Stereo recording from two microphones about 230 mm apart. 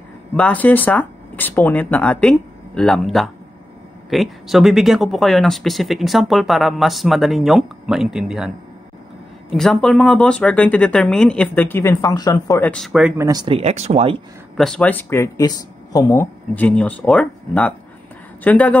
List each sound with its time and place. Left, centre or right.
0.4 s speech: centre
9.5 s speech: centre
13.3 s speech: right
14.6 s speech: centre